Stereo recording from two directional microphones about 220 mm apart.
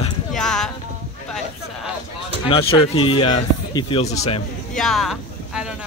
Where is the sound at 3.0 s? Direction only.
20° left (ahead or behind).